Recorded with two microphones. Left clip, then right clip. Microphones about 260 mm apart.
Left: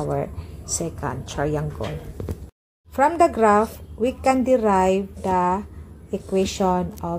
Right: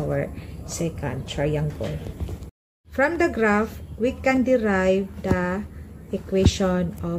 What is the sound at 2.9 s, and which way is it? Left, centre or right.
A woman's voice, centre.